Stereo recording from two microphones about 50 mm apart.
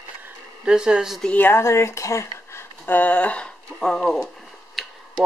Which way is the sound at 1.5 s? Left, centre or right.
Left.